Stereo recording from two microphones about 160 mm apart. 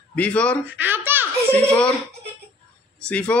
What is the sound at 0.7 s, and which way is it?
Speech, 10° right (ahead or behind).